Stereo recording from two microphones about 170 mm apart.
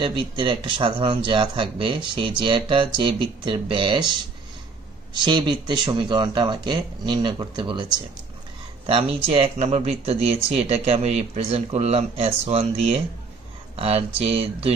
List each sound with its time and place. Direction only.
0.0 s speech: 30° right (ahead or behind)